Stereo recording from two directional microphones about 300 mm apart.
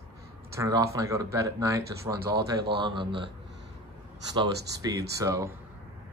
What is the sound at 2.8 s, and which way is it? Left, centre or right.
Speech, centre.